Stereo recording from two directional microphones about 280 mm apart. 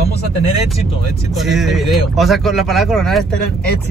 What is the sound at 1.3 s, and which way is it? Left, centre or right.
Speech, centre.